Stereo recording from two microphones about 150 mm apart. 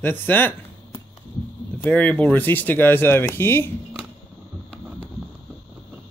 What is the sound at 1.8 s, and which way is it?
Speech, 10° left (ahead or behind).